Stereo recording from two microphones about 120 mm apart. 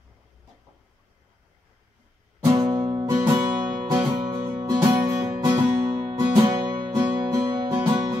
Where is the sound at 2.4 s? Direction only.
35° right (ahead or behind).